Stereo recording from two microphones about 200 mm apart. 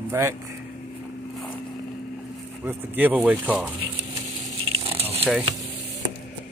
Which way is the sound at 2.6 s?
10° right (ahead or behind).